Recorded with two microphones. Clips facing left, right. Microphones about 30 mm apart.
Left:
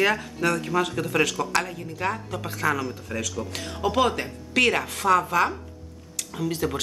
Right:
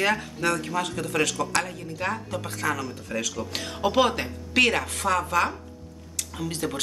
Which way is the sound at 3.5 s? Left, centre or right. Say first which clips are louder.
Right 1 dB; right.